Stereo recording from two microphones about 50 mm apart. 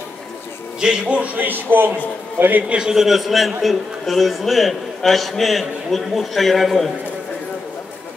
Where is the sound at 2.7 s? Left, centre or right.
Centre.